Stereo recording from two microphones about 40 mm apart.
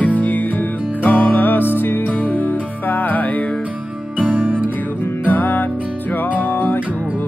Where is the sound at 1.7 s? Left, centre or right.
Left.